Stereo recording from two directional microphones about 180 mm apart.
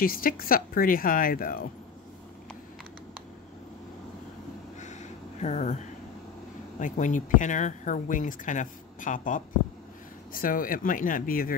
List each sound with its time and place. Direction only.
0.0 s speech: 50° left (ahead or behind)
5.4 s speech: 40° left (ahead or behind)
6.8 s speech: 45° left (ahead or behind)